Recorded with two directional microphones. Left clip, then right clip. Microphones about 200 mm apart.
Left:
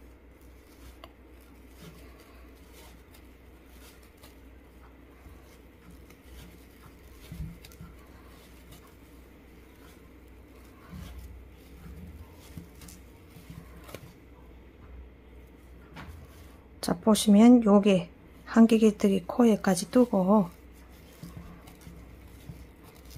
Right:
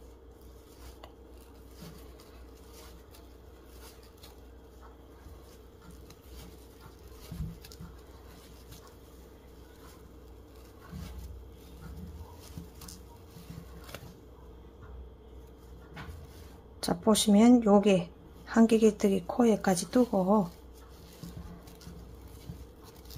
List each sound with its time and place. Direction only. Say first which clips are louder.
16.8 s a woman's voice: left 1 dB; 15° left (ahead or behind)